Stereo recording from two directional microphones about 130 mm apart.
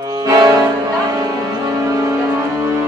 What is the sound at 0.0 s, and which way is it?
Music, 30° right (ahead or behind).